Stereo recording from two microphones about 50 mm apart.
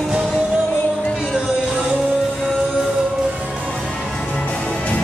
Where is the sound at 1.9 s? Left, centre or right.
Right.